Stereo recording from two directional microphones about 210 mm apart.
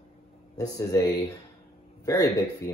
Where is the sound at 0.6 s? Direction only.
15° left (ahead or behind).